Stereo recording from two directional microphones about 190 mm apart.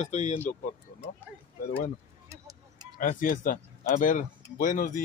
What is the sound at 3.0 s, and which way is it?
Speech, 45° left (ahead or behind).